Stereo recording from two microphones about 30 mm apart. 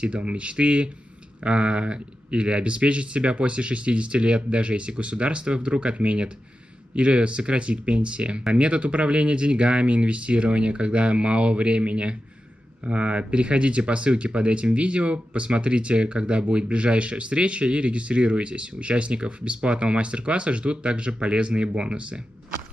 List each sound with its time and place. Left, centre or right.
0.0 s speech: right